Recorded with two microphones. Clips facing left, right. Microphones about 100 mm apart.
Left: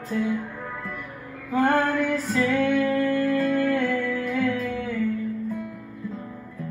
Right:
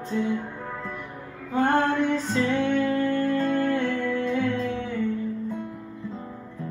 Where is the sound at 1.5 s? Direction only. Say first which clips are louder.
Left 1 dB; 25° right (ahead or behind).